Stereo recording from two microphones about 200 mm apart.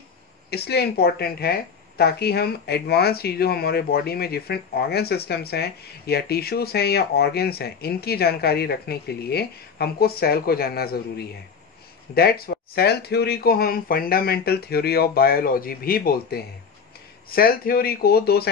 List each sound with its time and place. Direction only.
0.5 s a woman's voice: 55° left (ahead or behind)